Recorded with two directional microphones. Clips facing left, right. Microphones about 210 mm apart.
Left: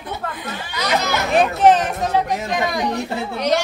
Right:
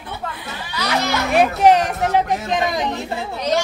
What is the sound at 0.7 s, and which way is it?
Speech, 15° left (ahead or behind).